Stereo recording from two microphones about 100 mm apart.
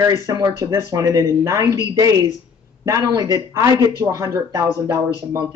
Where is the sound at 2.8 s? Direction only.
35° right (ahead or behind).